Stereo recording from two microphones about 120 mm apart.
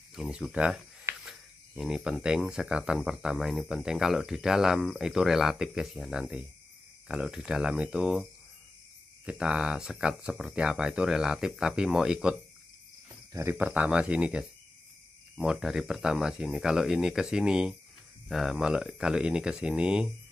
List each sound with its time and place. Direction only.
0.1 s speech: 5° right (ahead or behind)
13.3 s speech: 25° right (ahead or behind)
13.6 s speech: 10° right (ahead or behind)